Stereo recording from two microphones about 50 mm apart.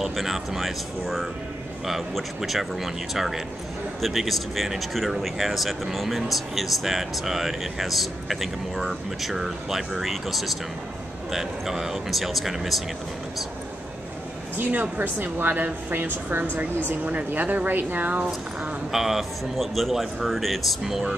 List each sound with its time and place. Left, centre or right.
0.0 s speech: centre
14.6 s a woman's voice: right
18.6 s speech: centre